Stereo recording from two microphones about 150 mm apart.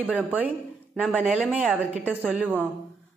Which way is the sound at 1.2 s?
5° right (ahead or behind).